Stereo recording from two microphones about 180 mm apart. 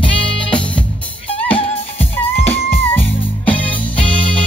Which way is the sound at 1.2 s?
30° left (ahead or behind).